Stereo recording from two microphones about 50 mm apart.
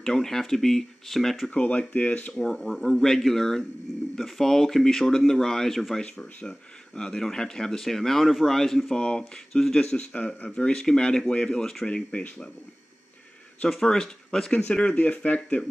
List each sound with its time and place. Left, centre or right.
0.0 s speech: centre
1.5 s speech: left
2.3 s speech: centre
8.9 s speech: centre
9.5 s speech: centre
9.8 s speech: left
11.9 s speech: left
13.8 s speech: centre